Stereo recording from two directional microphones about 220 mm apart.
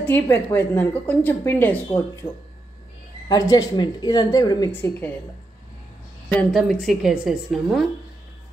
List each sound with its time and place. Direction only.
0.1 s speech: 10° left (ahead or behind)
3.3 s speech: 20° left (ahead or behind)
6.2 s a woman's voice: centre (ahead or behind)